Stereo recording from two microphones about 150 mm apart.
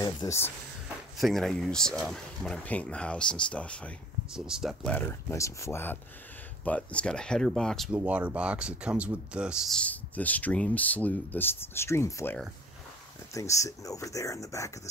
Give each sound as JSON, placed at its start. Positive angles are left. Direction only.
{"t": 0.0, "sound": "speech", "side_deg": 20}
{"t": 1.1, "sound": "speech", "side_deg": 0}
{"t": 4.3, "sound": "speech", "side_deg": -5}
{"t": 5.3, "sound": "speech", "side_deg": 20}
{"t": 7.9, "sound": "speech", "side_deg": -10}